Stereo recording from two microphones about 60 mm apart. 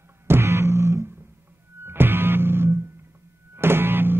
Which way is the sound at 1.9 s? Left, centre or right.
Right.